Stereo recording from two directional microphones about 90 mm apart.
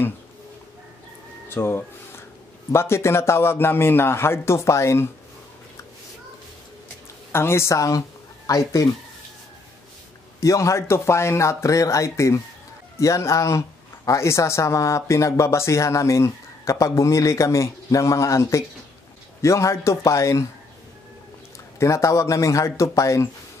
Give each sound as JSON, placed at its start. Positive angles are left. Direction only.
{"t": 1.5, "sound": "a man's voice", "side_deg": 25}
{"t": 7.3, "sound": "speech", "side_deg": 30}
{"t": 10.4, "sound": "speech", "side_deg": 35}
{"t": 21.7, "sound": "speech", "side_deg": 35}